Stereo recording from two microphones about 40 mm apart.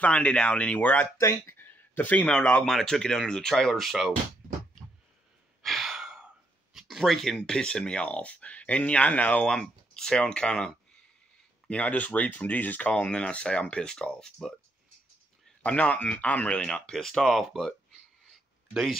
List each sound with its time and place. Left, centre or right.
0.0 s speech: left
1.1 s a sound: left
2.6 s speech: centre
3.7 s speech: centre
5.6 s sigh: centre
5.9 s gasp: centre
6.7 s a sound: centre
7.1 s speech: centre; by 9.4 s left
9.4 s speech: centre
11.7 s speech: left
13.1 s speech: left
14.1 s speech: centre
15.6 s speech: left
16.9 s speech: centre